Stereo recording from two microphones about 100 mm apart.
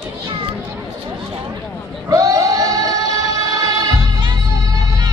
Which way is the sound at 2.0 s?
35° right (ahead or behind).